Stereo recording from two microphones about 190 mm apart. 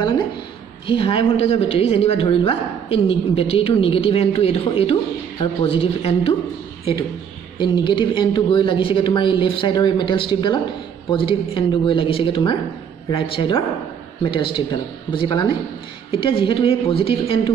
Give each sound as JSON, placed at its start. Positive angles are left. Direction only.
{"t": 0.8, "sound": "a woman's voice", "side_deg": 30}
{"t": 7.5, "sound": "speech", "side_deg": 25}